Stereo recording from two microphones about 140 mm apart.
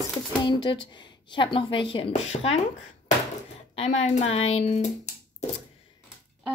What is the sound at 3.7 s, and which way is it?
A woman's voice, 45° left (ahead or behind).